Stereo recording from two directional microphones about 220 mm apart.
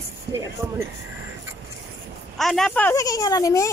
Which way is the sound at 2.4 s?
Centre (ahead or behind).